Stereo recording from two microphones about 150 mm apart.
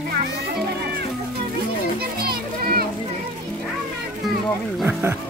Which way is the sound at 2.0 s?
90° right.